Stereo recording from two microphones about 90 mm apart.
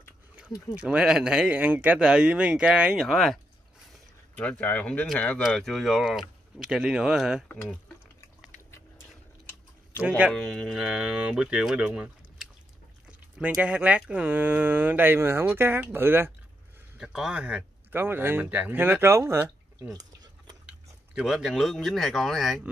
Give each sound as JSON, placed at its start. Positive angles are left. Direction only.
{"t": 0.7, "sound": "speech", "side_deg": -10}
{"t": 4.4, "sound": "speech", "side_deg": 15}
{"t": 5.5, "sound": "speech", "side_deg": 5}
{"t": 10.0, "sound": "speech", "side_deg": -15}
{"t": 10.3, "sound": "speech", "side_deg": 0}
{"t": 17.0, "sound": "speech", "side_deg": -5}
{"t": 17.9, "sound": "speech", "side_deg": -25}
{"t": 19.9, "sound": "a sound", "side_deg": -45}
{"t": 21.1, "sound": "speech", "side_deg": -5}